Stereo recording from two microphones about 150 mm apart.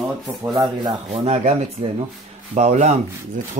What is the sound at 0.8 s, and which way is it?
Speech, 40° right (ahead or behind).